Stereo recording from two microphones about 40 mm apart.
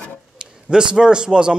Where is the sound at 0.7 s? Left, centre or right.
Right.